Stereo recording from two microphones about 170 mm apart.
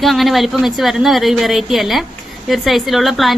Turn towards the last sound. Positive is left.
turn(degrees=0)  # may be behind; listen again after turning